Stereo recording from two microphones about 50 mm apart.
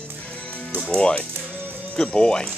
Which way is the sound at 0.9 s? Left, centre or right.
Left.